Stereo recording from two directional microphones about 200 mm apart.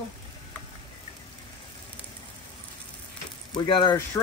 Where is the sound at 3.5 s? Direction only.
25° left (ahead or behind).